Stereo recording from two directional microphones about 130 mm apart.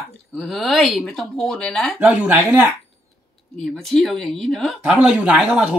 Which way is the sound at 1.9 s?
15° right (ahead or behind).